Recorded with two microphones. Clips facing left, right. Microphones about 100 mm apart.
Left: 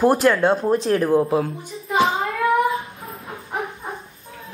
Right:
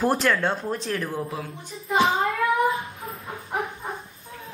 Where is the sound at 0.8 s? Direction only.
30° left (ahead or behind).